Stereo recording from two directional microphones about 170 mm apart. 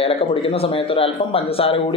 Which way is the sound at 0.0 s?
35° left (ahead or behind).